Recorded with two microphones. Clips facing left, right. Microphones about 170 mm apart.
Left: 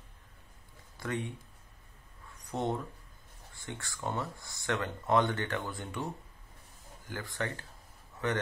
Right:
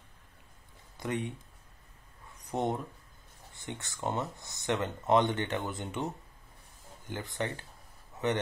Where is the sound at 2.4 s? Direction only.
20° right (ahead or behind).